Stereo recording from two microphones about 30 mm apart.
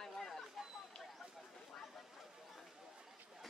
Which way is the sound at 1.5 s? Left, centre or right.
Centre.